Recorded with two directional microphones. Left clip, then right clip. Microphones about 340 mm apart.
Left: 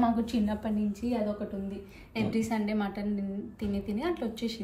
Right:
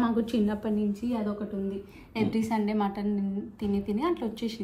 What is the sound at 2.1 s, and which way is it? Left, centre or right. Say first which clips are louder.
A woman's voice: right 2 dB; centre.